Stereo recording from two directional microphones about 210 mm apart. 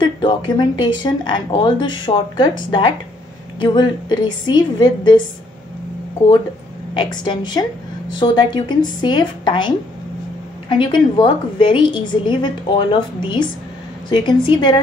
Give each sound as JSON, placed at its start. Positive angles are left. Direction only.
{"t": 0.0, "sound": "a woman's voice", "side_deg": 20}
{"t": 6.9, "sound": "a woman's voice", "side_deg": 20}